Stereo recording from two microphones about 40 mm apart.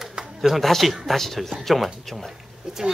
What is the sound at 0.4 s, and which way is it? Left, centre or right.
Speech, centre.